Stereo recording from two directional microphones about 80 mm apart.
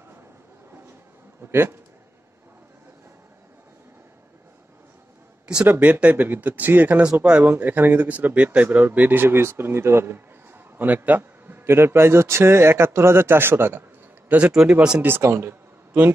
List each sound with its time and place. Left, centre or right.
1.5 s a man's voice: right
5.7 s a man's voice: right
7.5 s a man's voice: right
14.3 s speech: centre
15.0 s speech: right